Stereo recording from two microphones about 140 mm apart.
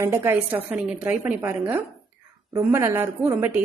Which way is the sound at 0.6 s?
5° right (ahead or behind).